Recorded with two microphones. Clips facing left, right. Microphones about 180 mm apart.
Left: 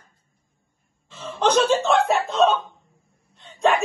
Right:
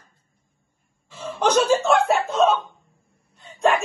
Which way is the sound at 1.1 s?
10° right (ahead or behind).